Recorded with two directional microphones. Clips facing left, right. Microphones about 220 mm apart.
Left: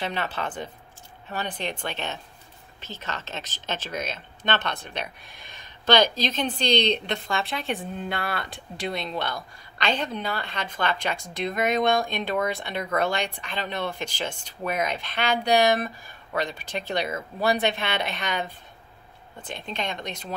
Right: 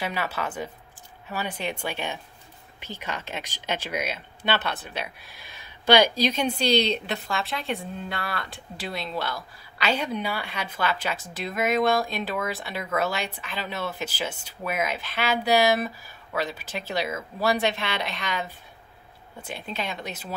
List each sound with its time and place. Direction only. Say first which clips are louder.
0.0 s speech: even; 10° right (ahead or behind)